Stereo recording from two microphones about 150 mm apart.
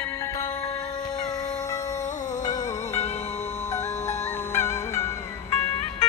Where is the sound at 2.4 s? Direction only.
45° left (ahead or behind).